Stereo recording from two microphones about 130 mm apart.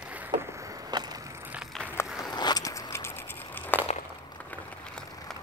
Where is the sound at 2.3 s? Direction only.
30° left (ahead or behind); by 5.4 s 5° left (ahead or behind).